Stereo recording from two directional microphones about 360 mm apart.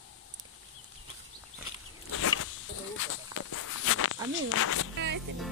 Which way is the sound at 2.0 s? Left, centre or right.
Left.